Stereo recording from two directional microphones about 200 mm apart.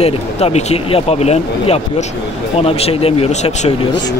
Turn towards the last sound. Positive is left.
turn(degrees=30)  # may be behind; listen again after turning